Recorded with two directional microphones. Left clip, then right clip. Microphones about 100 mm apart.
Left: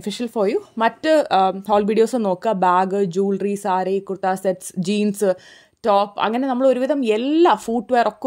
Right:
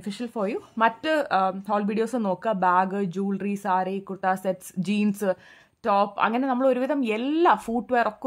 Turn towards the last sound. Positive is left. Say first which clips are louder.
# left 4 dB
turn(degrees=40)  # may be behind; listen again after turning